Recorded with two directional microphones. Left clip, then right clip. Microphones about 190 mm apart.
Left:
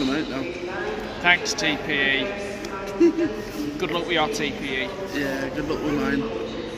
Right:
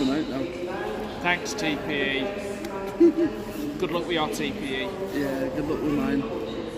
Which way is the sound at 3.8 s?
5° left (ahead or behind).